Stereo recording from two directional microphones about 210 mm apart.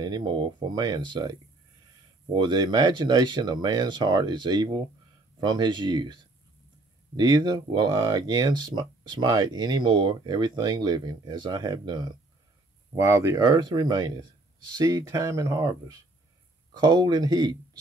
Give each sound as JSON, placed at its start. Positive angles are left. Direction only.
{"t": 0.0, "sound": "speech", "side_deg": -20}
{"t": 2.3, "sound": "speech", "side_deg": -20}
{"t": 7.2, "sound": "speech", "side_deg": -20}